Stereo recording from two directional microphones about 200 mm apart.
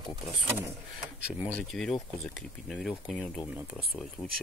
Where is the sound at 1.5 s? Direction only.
Centre (ahead or behind).